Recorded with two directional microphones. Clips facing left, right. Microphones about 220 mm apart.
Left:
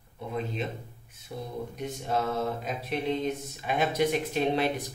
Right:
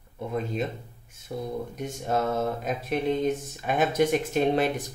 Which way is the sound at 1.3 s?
45° right (ahead or behind).